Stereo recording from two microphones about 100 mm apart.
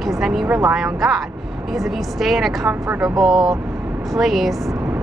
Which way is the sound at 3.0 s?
Centre (ahead or behind).